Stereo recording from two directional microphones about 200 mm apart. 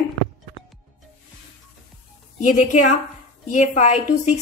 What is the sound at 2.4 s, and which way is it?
A woman's voice, 35° left (ahead or behind).